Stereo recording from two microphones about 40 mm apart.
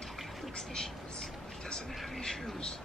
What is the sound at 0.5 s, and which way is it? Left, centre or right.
Speech, centre.